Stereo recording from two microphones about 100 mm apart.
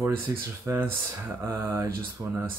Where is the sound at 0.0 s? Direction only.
25° right (ahead or behind).